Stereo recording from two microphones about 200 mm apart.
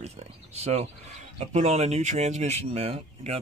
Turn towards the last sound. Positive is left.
turn(degrees=-30)  # may be behind; listen again after turning